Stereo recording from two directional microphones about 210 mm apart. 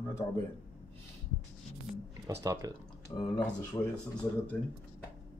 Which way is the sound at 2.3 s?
15° right (ahead or behind).